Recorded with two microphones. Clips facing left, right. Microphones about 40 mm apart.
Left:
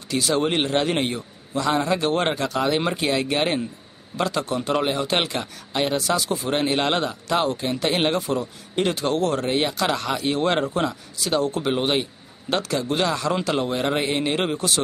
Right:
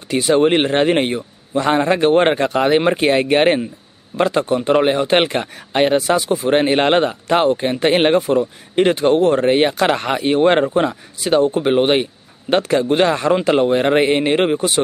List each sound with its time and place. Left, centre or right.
0.1 s a man's voice: right